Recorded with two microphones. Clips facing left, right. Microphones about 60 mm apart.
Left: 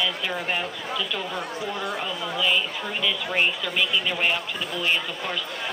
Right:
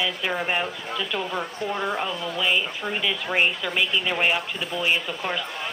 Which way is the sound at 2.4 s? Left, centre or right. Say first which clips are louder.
Even; centre.